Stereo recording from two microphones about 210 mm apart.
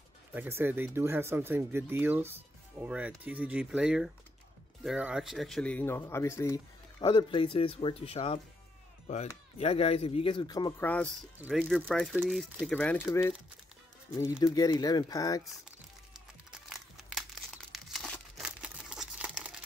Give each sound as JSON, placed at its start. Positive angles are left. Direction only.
{"t": 0.3, "sound": "speech", "side_deg": -10}
{"t": 10.8, "sound": "speech", "side_deg": 5}
{"t": 11.3, "sound": "speech", "side_deg": -5}
{"t": 16.4, "sound": "crumpling", "side_deg": 0}